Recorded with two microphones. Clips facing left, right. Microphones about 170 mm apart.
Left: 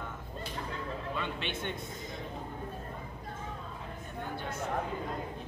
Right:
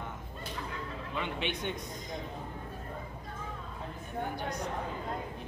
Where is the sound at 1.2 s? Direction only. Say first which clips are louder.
Right 2 dB; 15° right (ahead or behind).